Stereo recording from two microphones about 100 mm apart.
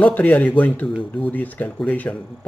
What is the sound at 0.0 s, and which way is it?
Speech, 15° left (ahead or behind).